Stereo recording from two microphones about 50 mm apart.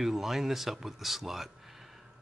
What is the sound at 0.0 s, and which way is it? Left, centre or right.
Speech, centre.